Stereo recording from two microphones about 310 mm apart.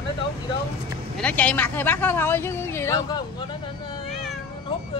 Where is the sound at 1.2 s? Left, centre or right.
Centre.